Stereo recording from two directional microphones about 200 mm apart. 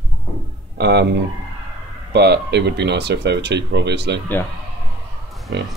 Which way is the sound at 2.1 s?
55° right (ahead or behind).